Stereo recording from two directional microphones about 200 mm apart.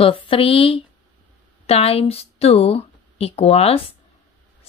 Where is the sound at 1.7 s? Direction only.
30° left (ahead or behind).